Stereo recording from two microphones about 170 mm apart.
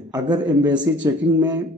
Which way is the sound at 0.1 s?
25° right (ahead or behind).